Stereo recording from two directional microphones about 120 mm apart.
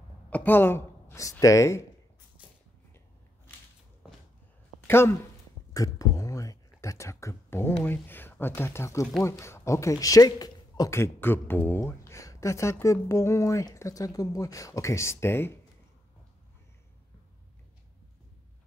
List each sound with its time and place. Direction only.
0.3 s speech: 15° left (ahead or behind)
2.4 s a sound: 10° right (ahead or behind)
4.8 s speech: 20° left (ahead or behind)
5.7 s a sound: 30° left (ahead or behind)
7.8 s speech: 15° left (ahead or behind)
11.0 s speech: 20° left (ahead or behind)